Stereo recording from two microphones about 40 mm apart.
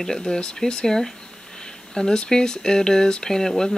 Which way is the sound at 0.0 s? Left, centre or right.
Centre.